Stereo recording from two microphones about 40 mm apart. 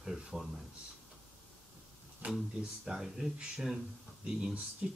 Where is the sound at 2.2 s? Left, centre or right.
Right.